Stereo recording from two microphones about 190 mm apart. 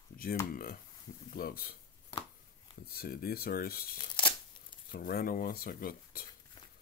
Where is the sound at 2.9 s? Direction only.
55° left (ahead or behind).